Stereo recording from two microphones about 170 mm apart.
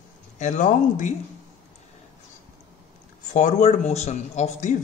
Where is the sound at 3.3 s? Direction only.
45° left (ahead or behind).